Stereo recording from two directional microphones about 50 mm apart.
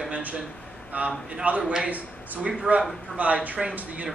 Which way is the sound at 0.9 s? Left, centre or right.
Right.